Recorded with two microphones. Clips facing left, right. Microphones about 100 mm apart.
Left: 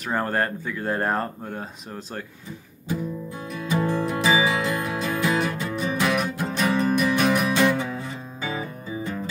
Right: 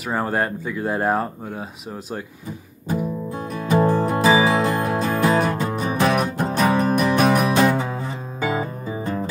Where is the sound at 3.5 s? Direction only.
45° right (ahead or behind).